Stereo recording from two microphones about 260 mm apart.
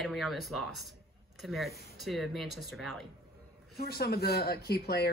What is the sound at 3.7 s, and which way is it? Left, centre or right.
Speech, left.